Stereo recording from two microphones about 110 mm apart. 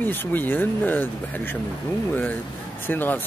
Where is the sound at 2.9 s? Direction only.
15° left (ahead or behind).